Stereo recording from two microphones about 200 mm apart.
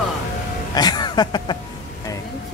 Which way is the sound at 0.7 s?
20° left (ahead or behind).